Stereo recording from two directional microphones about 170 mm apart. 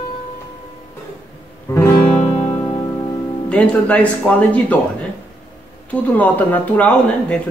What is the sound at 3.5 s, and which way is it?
Speech, 10° left (ahead or behind).